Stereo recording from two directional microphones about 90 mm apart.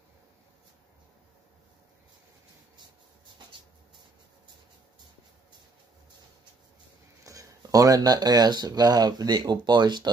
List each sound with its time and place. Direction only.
7.2 s speech: 40° right (ahead or behind); by 10.1 s 55° right (ahead or behind)